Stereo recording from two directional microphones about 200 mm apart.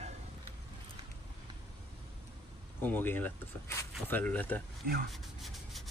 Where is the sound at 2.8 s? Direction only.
10° left (ahead or behind).